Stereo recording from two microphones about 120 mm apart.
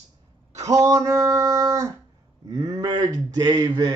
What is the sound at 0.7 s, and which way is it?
Speech, 25° right (ahead or behind).